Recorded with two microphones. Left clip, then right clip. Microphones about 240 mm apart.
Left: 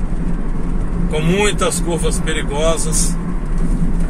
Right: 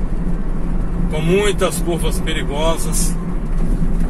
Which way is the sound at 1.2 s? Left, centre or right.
Centre.